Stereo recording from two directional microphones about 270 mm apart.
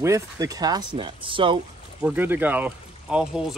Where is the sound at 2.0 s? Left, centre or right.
Centre.